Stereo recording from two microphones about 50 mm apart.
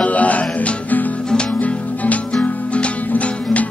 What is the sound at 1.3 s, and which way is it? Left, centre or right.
Music, centre.